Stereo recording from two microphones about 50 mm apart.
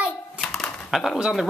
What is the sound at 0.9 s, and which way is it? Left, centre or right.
Speech, centre.